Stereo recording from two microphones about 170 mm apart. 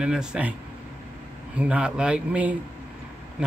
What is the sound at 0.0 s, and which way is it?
Speech, 5° right (ahead or behind).